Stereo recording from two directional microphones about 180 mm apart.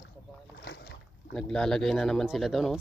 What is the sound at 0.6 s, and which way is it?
Boat, 70° left (ahead or behind).